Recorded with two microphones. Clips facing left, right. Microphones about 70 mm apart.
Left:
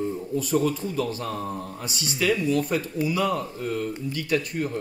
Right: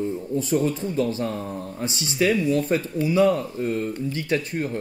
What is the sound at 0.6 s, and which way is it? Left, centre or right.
Speech, right.